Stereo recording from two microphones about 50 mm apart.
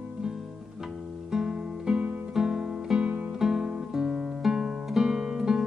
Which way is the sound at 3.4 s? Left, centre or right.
Centre.